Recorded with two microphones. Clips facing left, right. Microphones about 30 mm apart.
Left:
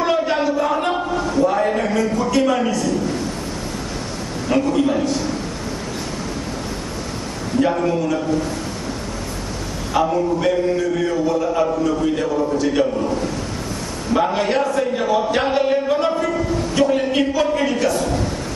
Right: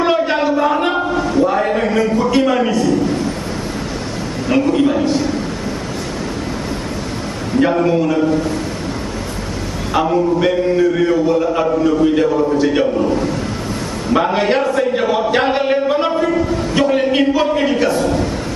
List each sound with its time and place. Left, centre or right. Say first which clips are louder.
0.0 s a sound: right 3 dB; right
4.5 s a man's voice: right 3 dB; right
7.5 s a man's voice: right 4 dB; right
9.9 s a man's voice: right 3 dB; right